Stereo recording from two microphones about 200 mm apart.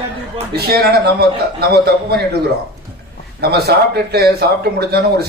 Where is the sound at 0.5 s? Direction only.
55° right (ahead or behind).